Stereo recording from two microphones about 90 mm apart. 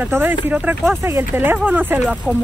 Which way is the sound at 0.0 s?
20° right (ahead or behind).